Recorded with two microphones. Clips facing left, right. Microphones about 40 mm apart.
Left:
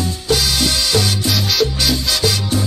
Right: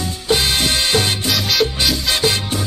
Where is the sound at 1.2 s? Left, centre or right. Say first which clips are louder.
Even; centre.